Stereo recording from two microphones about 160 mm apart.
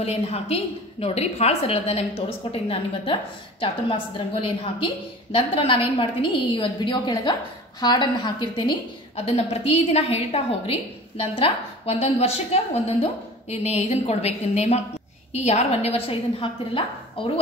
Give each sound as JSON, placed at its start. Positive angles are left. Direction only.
{"t": 0.0, "sound": "a woman's voice", "side_deg": 40}
{"t": 13.5, "sound": "a woman's voice", "side_deg": 40}